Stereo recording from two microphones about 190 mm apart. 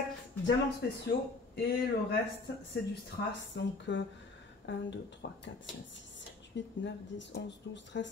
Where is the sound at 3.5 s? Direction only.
70° left (ahead or behind).